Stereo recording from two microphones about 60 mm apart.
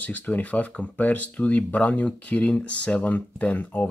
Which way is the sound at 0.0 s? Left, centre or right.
Left.